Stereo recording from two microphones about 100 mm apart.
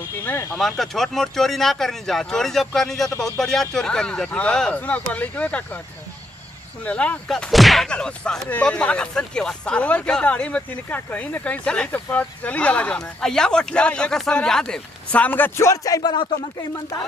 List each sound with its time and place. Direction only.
0.2 s speech: 25° left (ahead or behind)
0.6 s speech: 5° left (ahead or behind)
6.8 s speech: 15° left (ahead or behind); by 16.1 s 35° left (ahead or behind)
16.1 s speech: 55° left (ahead or behind)